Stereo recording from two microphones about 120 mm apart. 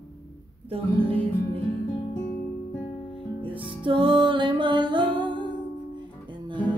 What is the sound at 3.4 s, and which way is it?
Music, 45° right (ahead or behind).